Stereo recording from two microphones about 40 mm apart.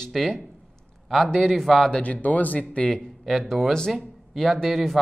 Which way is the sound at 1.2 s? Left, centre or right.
Centre.